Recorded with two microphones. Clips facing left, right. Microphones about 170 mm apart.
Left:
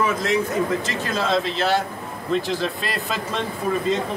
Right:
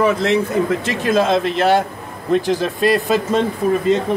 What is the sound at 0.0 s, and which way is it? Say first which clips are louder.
Speech: right 6 dB; 65° right (ahead or behind).